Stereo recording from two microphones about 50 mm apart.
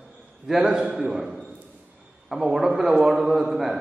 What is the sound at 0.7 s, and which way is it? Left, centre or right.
Speech, centre.